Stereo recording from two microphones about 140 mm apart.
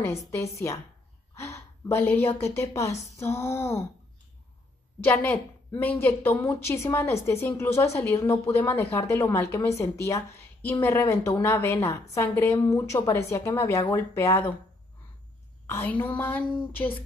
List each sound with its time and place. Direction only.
0.0 s a woman's voice: 20° left (ahead or behind)
5.0 s a woman's voice: 15° left (ahead or behind)
15.6 s a woman's voice: 15° left (ahead or behind)